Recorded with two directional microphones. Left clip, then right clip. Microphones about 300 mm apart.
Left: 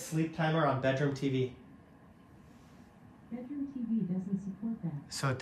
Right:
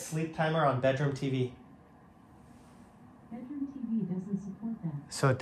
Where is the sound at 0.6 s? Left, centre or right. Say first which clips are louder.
Right 2 dB; right.